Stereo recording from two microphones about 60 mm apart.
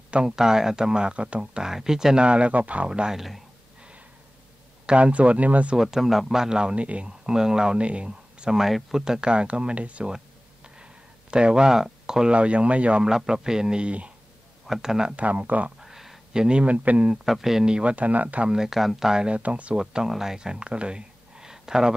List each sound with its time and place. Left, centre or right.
0.1 s speech: centre
3.2 s speech: centre
4.8 s speech: centre
5.8 s speech: centre; by 10.1 s right
10.1 s a sound: centre
13.0 s speech: centre
14.7 s speech: centre
15.2 s speech: right
15.8 s a sound: centre
16.4 s speech: centre
17.1 s speech: centre; by 18.5 s right
18.5 s speech: centre
19.2 s speech: right
19.8 s speech: centre